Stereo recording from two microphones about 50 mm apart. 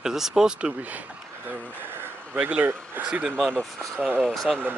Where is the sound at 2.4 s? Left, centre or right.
Right.